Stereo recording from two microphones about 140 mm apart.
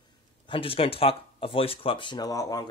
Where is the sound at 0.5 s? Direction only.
40° left (ahead or behind).